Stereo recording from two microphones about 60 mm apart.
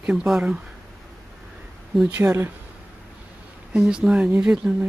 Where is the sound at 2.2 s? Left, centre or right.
Centre.